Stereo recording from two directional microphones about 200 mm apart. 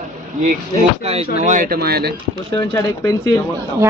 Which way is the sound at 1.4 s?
40° right (ahead or behind).